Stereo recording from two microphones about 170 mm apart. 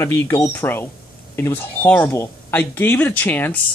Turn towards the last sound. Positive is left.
turn(degrees=10)  # may be behind; listen again after turning